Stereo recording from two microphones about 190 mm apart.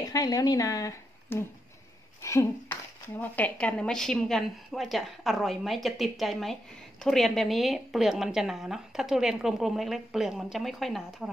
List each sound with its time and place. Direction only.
0.0 s speech: 20° left (ahead or behind); by 11.2 s centre (ahead or behind)